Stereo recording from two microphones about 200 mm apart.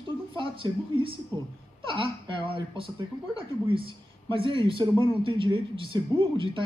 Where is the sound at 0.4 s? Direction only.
25° right (ahead or behind).